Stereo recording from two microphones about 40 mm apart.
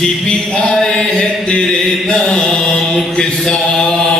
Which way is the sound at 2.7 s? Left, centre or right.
Left.